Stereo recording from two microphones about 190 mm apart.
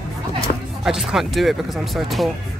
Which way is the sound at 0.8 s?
Centre (ahead or behind).